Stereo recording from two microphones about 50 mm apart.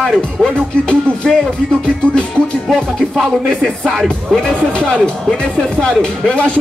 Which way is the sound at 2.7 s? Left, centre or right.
Centre.